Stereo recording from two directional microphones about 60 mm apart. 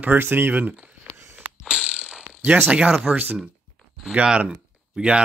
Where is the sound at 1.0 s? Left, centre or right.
Right.